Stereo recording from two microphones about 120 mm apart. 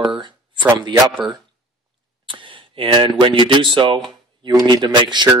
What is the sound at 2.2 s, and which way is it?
Speech, 45° right (ahead or behind).